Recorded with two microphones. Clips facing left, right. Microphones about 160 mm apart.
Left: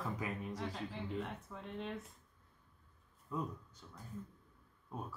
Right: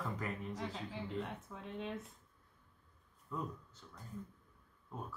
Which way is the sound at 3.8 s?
20° left (ahead or behind).